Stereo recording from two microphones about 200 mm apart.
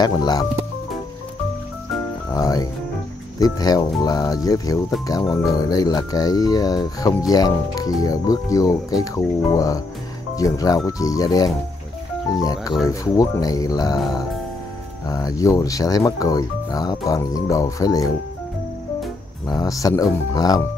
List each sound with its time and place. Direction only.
0.0 s speech: 20° left (ahead or behind)
2.3 s speech: 20° left (ahead or behind)
15.0 s speech: 20° left (ahead or behind)
19.4 s speech: 20° left (ahead or behind)